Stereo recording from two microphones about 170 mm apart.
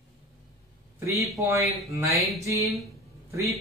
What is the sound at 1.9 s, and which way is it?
Speech, 20° right (ahead or behind).